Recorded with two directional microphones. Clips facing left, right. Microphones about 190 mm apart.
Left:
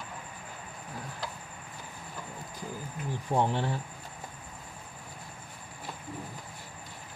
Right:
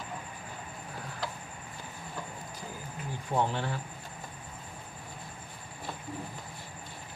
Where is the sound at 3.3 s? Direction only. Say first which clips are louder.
Left 2 dB; 30° left (ahead or behind).